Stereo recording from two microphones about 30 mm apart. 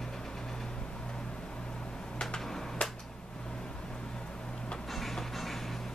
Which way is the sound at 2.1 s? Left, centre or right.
Centre.